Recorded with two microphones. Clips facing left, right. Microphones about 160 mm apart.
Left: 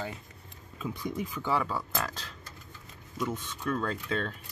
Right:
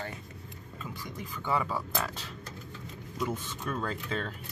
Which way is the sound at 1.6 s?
5° right (ahead or behind).